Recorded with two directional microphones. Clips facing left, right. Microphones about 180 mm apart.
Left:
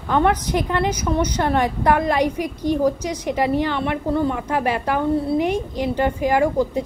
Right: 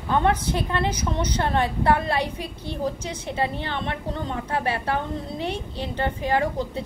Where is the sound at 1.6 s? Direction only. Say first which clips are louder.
Left 2 dB; 15° left (ahead or behind).